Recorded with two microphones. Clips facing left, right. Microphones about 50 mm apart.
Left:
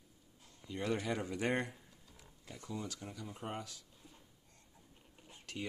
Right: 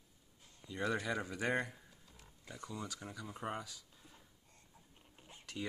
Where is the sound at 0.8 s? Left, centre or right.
Centre.